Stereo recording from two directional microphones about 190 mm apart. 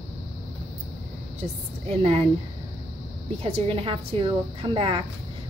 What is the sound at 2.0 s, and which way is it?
Speech, 30° right (ahead or behind).